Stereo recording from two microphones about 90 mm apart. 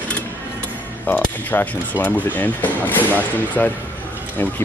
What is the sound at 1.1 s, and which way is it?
Speech, 20° left (ahead or behind).